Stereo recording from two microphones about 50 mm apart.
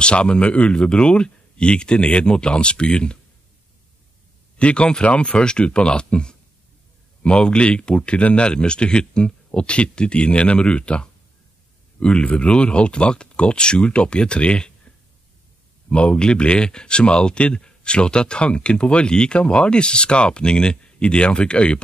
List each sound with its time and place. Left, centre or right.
0.0 s speech: left
4.6 s speech: left